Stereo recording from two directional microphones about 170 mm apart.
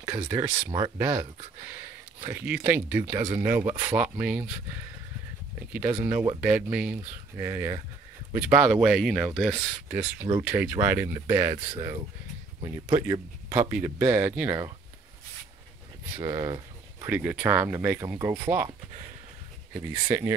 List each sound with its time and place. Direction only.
0.3 s speech: 15° right (ahead or behind)
1.1 s speech: 40° right (ahead or behind)
1.6 s speech: 15° right (ahead or behind)
5.7 s speech: 10° right (ahead or behind)
7.3 s speech: 15° right (ahead or behind)
13.0 s speech: 20° right (ahead or behind)
16.2 s a sound: 20° right (ahead or behind)
17.1 s speech: 10° right (ahead or behind)
20.1 s speech: 20° right (ahead or behind)